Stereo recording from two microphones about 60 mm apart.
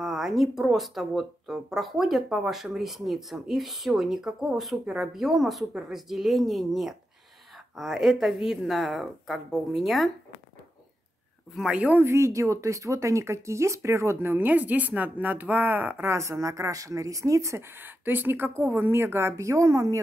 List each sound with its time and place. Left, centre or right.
0.0 s speech: centre
11.7 s speech: centre
12.1 s speech: right
14.2 s a woman's voice: right
16.2 s speech: right
17.7 s a woman's voice: right